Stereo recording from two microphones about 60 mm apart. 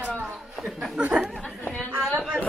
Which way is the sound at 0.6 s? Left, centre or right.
Centre.